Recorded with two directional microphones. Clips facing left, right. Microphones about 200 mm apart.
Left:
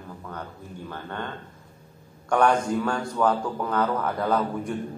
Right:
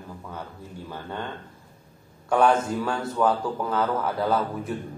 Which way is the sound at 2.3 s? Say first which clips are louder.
Right 1 dB; 5° right (ahead or behind).